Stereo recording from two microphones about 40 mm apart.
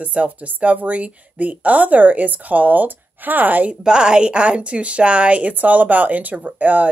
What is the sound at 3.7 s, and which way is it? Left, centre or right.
A woman's voice, right.